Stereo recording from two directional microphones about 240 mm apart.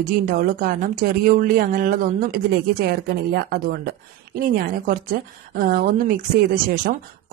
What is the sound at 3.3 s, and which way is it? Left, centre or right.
Speech, right.